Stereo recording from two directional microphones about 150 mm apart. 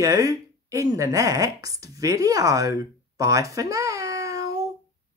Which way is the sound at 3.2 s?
20° right (ahead or behind).